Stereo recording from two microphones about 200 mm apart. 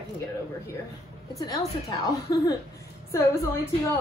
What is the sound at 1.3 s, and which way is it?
Speech, 20° left (ahead or behind).